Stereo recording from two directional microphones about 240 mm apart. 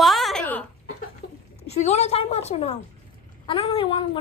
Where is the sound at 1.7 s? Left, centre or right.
Left.